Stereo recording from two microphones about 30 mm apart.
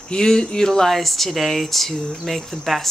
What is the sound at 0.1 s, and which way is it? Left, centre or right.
Speech, left.